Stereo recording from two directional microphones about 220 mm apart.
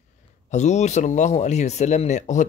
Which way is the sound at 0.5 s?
30° left (ahead or behind).